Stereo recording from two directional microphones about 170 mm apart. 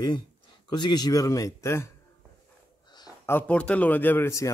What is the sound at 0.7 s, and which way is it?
A man's voice, 25° left (ahead or behind).